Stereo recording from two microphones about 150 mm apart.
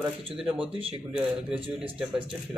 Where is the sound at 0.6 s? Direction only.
40° right (ahead or behind).